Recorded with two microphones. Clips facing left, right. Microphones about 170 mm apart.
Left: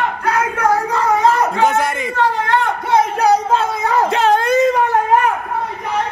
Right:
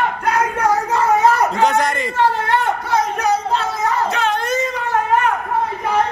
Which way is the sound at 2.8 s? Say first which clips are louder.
Left 4 dB; 25° left (ahead or behind).